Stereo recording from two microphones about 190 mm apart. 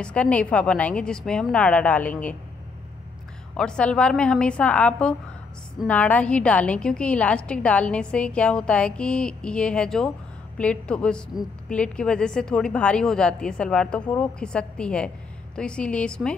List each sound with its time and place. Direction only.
0.0 s a woman's voice: 5° left (ahead or behind)
3.5 s a woman's voice: 5° left (ahead or behind)